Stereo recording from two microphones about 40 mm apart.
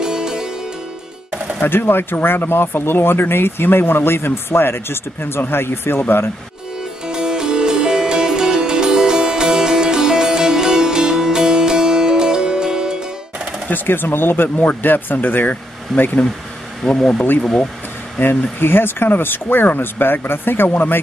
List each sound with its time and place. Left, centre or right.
0.0 s music: centre
1.6 s speech: left
7.1 s music: centre
13.8 s speech: left
15.9 s speech: centre
18.6 s speech: left